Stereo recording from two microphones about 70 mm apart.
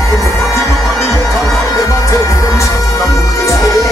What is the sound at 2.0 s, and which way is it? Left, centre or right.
Music, left.